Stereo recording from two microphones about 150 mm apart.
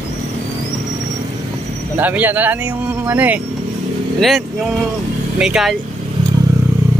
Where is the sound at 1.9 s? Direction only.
10° right (ahead or behind).